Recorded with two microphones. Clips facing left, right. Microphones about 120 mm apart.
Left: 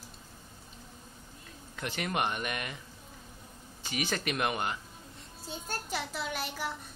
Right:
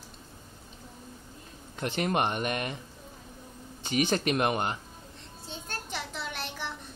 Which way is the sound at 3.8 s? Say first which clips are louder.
Right 7 dB; 30° right (ahead or behind).